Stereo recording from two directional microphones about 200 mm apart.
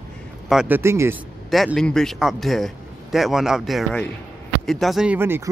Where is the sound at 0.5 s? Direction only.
5° right (ahead or behind).